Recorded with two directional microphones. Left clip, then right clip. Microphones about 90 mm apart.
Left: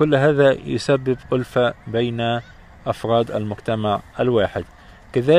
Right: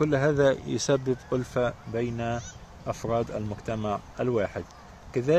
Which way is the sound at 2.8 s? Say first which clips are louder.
Left 9 dB; 75° left (ahead or behind).